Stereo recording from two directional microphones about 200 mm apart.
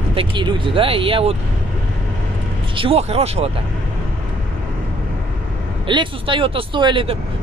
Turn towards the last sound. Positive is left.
turn(degrees=-25)  # may be behind; listen again after turning